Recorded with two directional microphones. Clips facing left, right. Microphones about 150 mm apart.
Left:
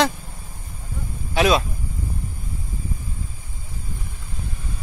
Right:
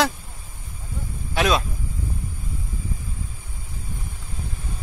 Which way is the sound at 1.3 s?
Centre (ahead or behind).